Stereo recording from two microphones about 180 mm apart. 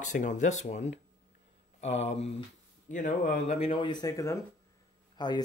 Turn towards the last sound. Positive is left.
turn(degrees=25)  # may be behind; listen again after turning